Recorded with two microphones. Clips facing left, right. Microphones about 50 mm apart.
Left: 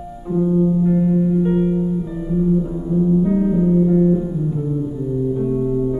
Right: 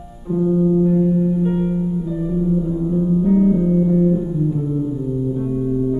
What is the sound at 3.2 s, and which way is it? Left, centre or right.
Music, centre.